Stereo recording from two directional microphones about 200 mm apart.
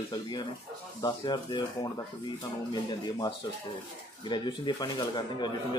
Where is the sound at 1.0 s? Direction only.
20° left (ahead or behind).